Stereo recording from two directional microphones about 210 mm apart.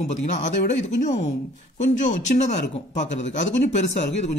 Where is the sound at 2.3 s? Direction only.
35° left (ahead or behind).